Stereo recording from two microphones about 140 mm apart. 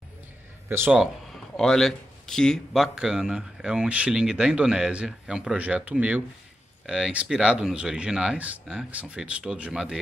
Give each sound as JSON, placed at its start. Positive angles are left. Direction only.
{"t": 0.7, "sound": "speech", "side_deg": -15}
{"t": 0.9, "sound": "speech", "side_deg": 5}